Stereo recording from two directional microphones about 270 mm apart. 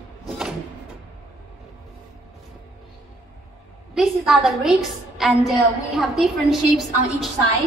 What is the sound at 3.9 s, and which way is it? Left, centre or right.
A woman's voice, centre.